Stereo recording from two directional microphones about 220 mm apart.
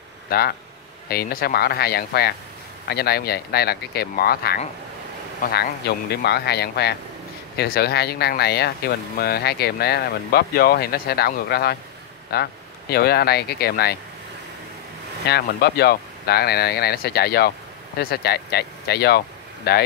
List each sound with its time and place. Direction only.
0.3 s speech: 45° left (ahead or behind)
15.2 s speech: 50° left (ahead or behind)